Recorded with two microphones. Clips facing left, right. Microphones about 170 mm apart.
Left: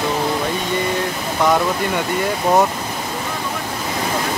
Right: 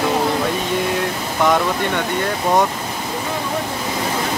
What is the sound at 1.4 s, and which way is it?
Speech, centre (ahead or behind).